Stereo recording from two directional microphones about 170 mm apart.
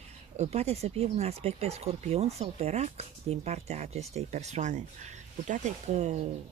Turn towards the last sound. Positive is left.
turn(degrees=-40)  # may be behind; listen again after turning